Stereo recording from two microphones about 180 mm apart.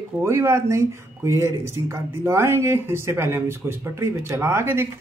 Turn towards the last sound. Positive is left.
turn(degrees=-15)  # may be behind; listen again after turning